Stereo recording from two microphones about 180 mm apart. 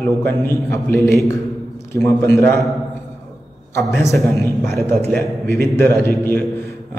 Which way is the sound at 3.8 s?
15° left (ahead or behind).